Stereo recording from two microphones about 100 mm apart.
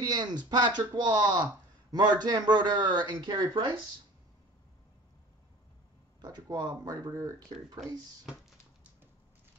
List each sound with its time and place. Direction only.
0.0 s speech: 45° right (ahead or behind)
6.2 s speech: 35° right (ahead or behind)